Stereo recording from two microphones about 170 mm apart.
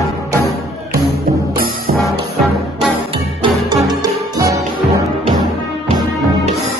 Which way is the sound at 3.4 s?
25° right (ahead or behind).